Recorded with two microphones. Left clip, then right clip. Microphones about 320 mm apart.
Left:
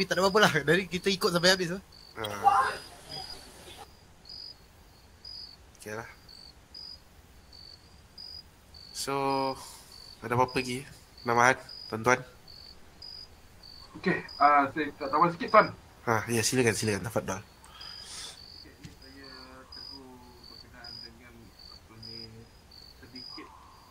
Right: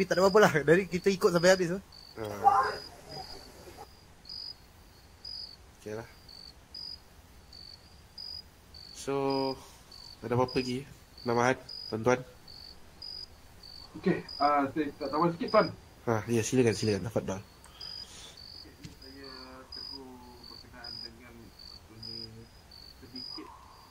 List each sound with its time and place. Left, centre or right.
0.0 s speech: left
4.3 s cricket: centre
5.9 s cricket: centre
6.2 s cricket: centre
8.2 s cricket: centre
8.9 s cricket: centre
12.4 s cricket: centre
14.0 s speech: centre
19.0 s cricket: centre
20.4 s insect: centre